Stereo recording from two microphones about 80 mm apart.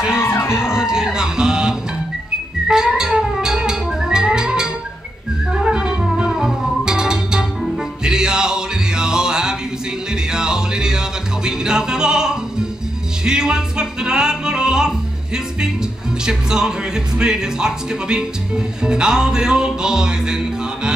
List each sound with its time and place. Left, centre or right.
0.2 s music: left
0.6 s music: centre